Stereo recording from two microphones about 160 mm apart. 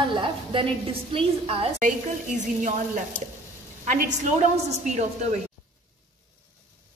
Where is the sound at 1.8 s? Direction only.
50° right (ahead or behind).